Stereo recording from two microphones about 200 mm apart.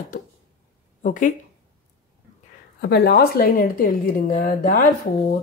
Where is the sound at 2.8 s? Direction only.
55° left (ahead or behind).